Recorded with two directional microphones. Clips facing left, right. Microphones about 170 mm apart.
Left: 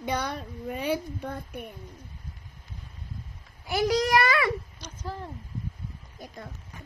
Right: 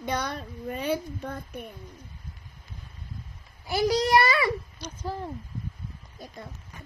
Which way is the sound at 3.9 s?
30° right (ahead or behind).